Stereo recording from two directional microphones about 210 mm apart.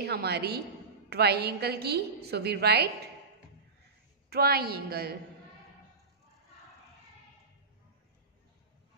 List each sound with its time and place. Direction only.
0.0 s a woman's voice: 50° right (ahead or behind)
4.3 s a woman's voice: 50° right (ahead or behind)